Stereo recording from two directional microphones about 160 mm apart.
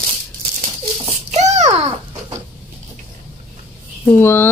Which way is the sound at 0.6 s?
45° right (ahead or behind).